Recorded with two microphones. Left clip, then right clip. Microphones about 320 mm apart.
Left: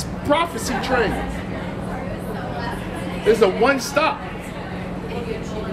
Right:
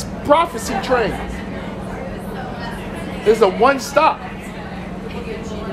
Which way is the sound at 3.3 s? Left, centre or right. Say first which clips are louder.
Right 3 dB; centre.